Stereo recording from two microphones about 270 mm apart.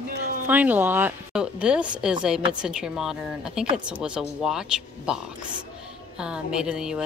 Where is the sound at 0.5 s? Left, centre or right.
Centre.